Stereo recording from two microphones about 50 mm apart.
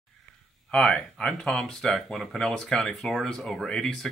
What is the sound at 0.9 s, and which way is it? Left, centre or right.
Speech, centre.